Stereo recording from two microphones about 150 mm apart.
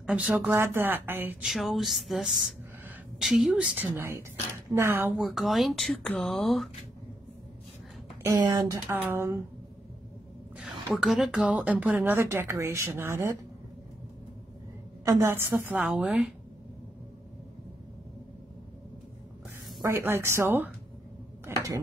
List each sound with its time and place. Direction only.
0.0 s speech: 10° right (ahead or behind)
1.5 s speech: centre (ahead or behind); by 5.1 s 15° right (ahead or behind)
5.1 s speech: centre (ahead or behind)
8.2 s speech: 20° right (ahead or behind)
8.8 s speech: 10° right (ahead or behind)
10.6 s speech: centre (ahead or behind); by 13.4 s 20° right (ahead or behind)
15.0 s speech: 15° right (ahead or behind)
19.8 s speech: 15° right (ahead or behind)
21.5 s a sound: 15° right (ahead or behind)